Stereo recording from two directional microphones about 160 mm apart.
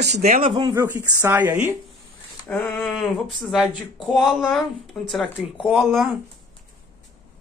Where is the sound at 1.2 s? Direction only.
15° right (ahead or behind).